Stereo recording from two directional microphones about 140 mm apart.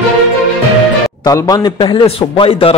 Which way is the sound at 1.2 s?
25° left (ahead or behind).